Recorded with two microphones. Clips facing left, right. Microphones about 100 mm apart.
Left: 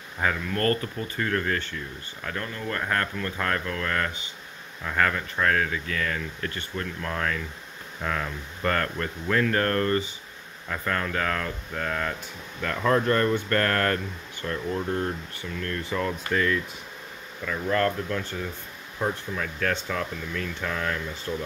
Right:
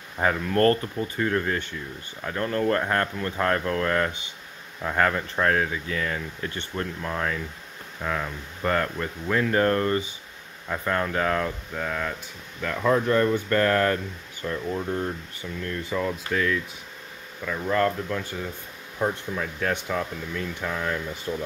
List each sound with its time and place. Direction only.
0.2 s speech: 35° right (ahead or behind)
11.7 s speech: 5° right (ahead or behind)
15.9 s speech: 5° right (ahead or behind)
17.5 s speech: 10° right (ahead or behind)